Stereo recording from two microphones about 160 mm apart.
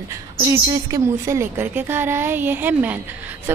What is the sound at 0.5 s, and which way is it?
A woman's voice, 20° right (ahead or behind).